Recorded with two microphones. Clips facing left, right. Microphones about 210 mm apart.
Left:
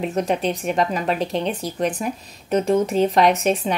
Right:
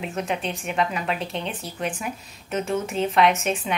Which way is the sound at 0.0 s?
40° left (ahead or behind).